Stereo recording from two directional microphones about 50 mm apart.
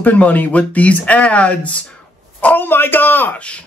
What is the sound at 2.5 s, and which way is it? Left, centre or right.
Speech, left.